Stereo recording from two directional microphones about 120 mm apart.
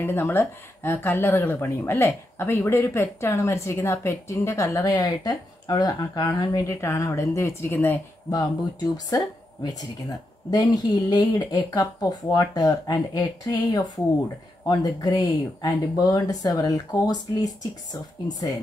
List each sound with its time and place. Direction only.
0.0 s speech: 20° left (ahead or behind)
8.3 s speech: 30° left (ahead or behind)